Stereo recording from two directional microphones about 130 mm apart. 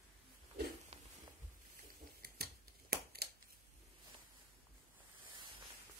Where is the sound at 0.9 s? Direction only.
50° right (ahead or behind).